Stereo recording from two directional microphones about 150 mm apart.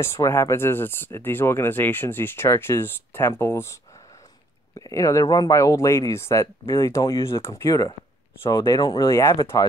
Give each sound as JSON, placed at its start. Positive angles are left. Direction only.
{"t": 0.0, "sound": "speech", "side_deg": 15}